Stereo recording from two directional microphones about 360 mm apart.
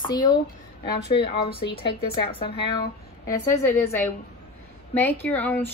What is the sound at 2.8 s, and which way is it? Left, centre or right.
Speech, centre.